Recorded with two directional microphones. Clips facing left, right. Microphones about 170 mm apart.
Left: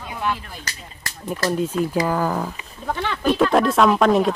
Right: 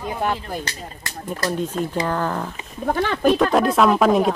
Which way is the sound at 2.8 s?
50° right (ahead or behind).